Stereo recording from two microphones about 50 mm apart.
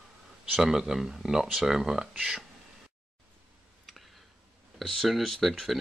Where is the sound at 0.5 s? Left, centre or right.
Centre.